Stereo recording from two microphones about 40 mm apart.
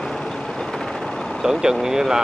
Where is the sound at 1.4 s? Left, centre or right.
Centre.